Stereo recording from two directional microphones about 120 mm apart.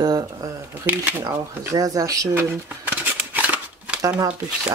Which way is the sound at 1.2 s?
30° right (ahead or behind).